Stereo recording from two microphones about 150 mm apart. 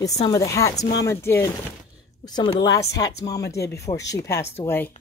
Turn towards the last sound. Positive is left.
turn(degrees=15)  # may be behind; listen again after turning